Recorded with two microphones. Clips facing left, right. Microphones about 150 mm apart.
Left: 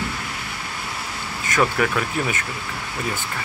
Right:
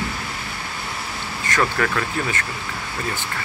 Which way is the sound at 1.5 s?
10° left (ahead or behind).